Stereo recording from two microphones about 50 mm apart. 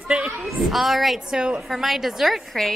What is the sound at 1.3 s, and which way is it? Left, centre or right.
Speech, centre.